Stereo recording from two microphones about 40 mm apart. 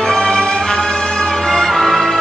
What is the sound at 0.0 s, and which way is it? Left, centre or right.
Music, centre.